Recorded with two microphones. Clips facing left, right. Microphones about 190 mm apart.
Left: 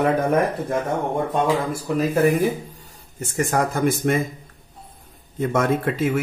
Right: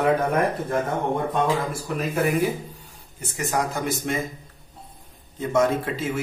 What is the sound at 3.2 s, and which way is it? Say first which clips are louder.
Speech: left 4 dB; 50° left (ahead or behind).